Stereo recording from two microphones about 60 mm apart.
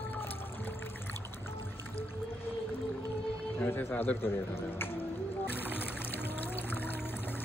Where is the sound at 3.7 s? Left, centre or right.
Left.